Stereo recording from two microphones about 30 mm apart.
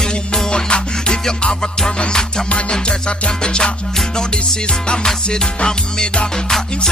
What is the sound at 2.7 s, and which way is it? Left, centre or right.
Music, left.